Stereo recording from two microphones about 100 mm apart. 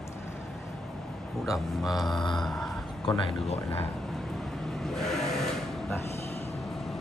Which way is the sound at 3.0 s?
65° left (ahead or behind).